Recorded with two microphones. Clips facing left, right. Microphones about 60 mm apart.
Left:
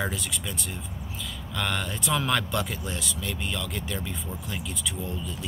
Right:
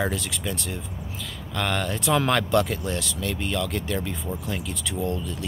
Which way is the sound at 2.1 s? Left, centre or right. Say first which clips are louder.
Right 4 dB; right.